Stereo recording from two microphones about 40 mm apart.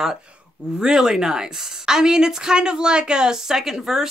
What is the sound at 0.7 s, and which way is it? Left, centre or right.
Speech, centre.